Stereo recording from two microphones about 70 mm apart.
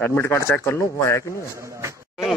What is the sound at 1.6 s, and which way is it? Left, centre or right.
Speech, right.